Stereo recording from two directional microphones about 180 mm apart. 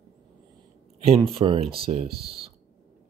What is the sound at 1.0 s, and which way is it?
Speech, 30° right (ahead or behind).